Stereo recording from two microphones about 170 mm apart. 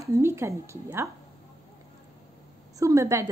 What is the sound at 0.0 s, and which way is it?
A woman's voice, 15° right (ahead or behind).